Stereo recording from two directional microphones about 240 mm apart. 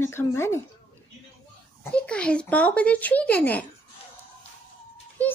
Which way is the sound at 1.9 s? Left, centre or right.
Centre.